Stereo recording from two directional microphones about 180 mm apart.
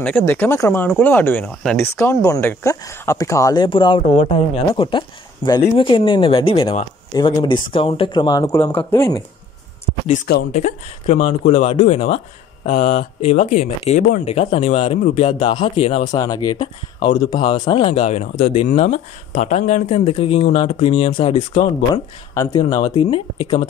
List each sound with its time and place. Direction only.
0.0 s speech: 10° left (ahead or behind)
2.2 s speech: 20° left (ahead or behind)
10.5 s speech: 40° left (ahead or behind)
16.2 s speech: 20° left (ahead or behind)
22.3 s speech: 20° left (ahead or behind)